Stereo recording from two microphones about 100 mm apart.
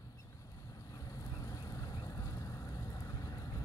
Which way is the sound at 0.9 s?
35° left (ahead or behind).